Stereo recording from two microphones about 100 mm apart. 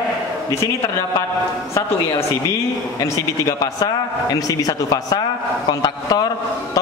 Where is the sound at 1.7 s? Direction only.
30° left (ahead or behind).